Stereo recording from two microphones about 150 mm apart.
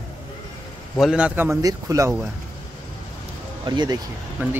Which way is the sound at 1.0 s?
5° right (ahead or behind).